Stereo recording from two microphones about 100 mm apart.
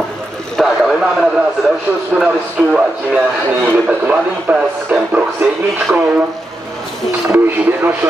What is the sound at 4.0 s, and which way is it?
Speech, 10° right (ahead or behind).